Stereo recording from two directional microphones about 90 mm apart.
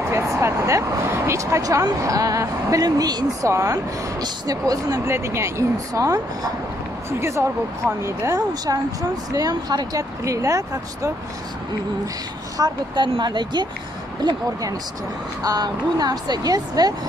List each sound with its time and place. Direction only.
0.1 s speech: 30° right (ahead or behind)
5.0 s speech: 30° right (ahead or behind)
9.3 s speech: 45° right (ahead or behind)
12.5 s speech: 55° right (ahead or behind)
14.2 s speech: 40° right (ahead or behind)